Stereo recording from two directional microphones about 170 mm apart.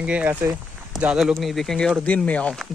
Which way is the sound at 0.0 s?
10° right (ahead or behind).